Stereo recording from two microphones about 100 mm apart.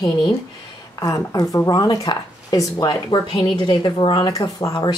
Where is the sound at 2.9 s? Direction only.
60° left (ahead or behind).